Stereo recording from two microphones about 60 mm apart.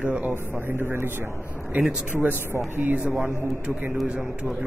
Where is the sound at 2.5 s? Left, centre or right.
Right.